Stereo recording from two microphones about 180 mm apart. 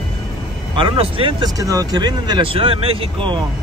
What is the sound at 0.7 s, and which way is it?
Speech, 30° right (ahead or behind).